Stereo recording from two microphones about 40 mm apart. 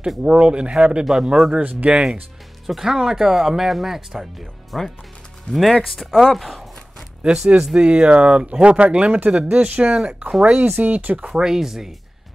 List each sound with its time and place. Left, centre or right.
0.2 s speech: right
1.0 s speech: centre
1.6 s speech: right
2.6 s speech: centre
7.2 s speech: right
11.2 s speech: centre